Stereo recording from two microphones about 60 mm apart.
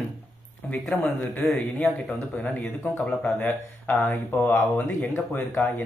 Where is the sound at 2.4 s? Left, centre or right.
Left.